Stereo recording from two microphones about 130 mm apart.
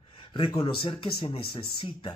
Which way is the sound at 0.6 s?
40° left (ahead or behind).